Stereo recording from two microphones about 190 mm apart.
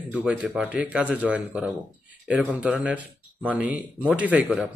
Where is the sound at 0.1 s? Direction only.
5° right (ahead or behind).